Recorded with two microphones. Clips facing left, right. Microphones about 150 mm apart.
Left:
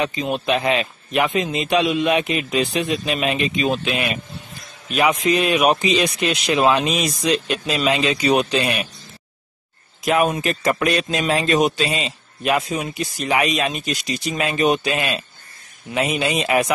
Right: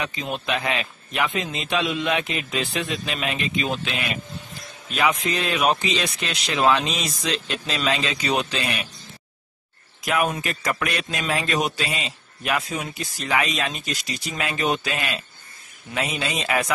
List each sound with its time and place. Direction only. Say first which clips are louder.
0.0 s speech: left 6 dB; 20° left (ahead or behind)
5.2 s speech: left 6 dB; 15° left (ahead or behind)
10.0 s speech: left 5 dB; 25° left (ahead or behind)